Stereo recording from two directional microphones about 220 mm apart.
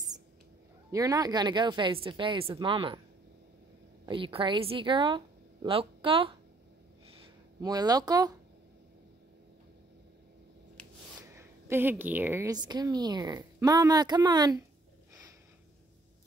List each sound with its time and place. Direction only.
0.9 s speech: 15° right (ahead or behind)
4.0 s a woman's voice: 25° right (ahead or behind)
10.8 s a sound: 5° left (ahead or behind)
11.3 s a woman's voice: 10° right (ahead or behind)